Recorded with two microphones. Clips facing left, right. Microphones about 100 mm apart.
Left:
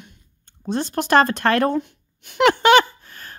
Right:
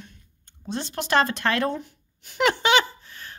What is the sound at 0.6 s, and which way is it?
Speech, 50° left (ahead or behind).